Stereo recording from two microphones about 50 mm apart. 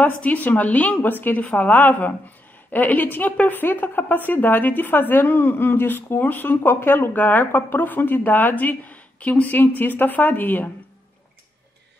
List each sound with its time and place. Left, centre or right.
0.2 s a woman's voice: left